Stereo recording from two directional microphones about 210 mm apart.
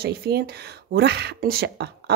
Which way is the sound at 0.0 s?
50° right (ahead or behind).